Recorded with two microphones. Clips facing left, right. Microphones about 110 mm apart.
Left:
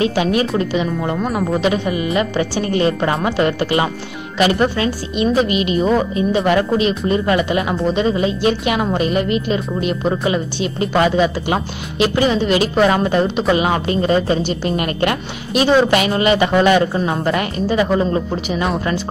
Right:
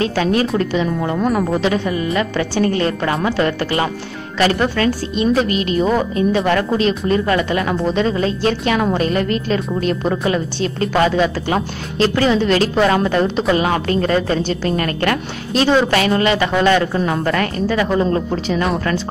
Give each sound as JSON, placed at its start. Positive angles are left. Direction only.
{"t": 0.0, "sound": "a woman's voice", "side_deg": 15}
{"t": 1.1, "sound": "speech", "side_deg": 0}
{"t": 1.6, "sound": "a woman's voice", "side_deg": 15}